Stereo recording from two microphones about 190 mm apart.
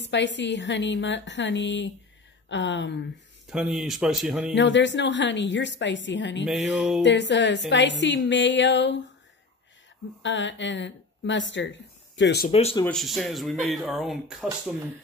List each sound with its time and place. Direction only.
0.0 s a woman's voice: 65° left (ahead or behind)
3.4 s speech: 5° right (ahead or behind)
4.6 s a woman's voice: 70° left (ahead or behind)
6.4 s speech: centre (ahead or behind)
7.0 s a woman's voice: 70° left (ahead or behind)
10.2 s speech: 75° left (ahead or behind)
12.4 s speech: 30° left (ahead or behind)
12.8 s speech: centre (ahead or behind)